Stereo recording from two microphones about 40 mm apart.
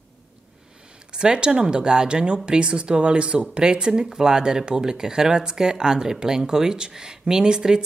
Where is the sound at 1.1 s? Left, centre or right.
Right.